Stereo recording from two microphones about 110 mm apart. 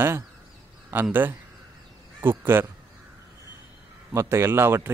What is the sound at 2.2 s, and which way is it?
Speech, 20° right (ahead or behind).